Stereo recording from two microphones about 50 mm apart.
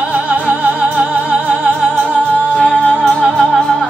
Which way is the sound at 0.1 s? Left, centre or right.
Right.